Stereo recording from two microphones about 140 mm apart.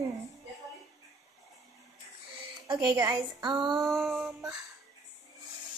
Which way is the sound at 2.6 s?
30° right (ahead or behind).